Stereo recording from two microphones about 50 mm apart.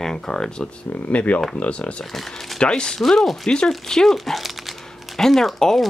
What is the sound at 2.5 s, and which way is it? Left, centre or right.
Speech, centre.